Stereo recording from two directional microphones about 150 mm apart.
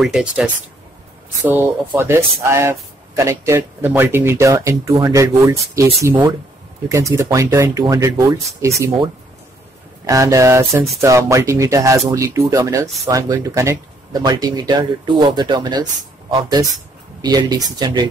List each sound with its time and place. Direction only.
0.0 s speech: centre (ahead or behind)
2.0 s speech: 15° right (ahead or behind)
6.9 s speech: 20° right (ahead or behind)
10.0 s speech: 20° right (ahead or behind)